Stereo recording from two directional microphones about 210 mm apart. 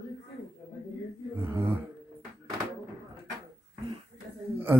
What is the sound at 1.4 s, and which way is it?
Speech, 10° right (ahead or behind).